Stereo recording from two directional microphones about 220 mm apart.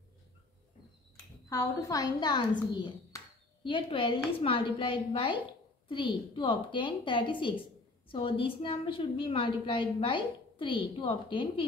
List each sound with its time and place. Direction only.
1.5 s a woman's voice: 15° left (ahead or behind)